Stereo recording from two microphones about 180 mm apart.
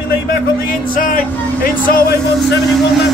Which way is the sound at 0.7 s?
45° left (ahead or behind).